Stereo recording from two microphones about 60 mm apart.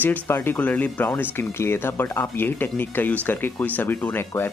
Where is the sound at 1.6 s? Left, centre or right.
Left.